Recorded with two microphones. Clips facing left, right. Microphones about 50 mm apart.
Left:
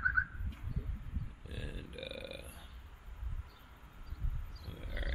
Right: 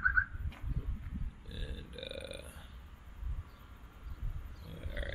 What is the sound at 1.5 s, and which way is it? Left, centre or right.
Burping, left.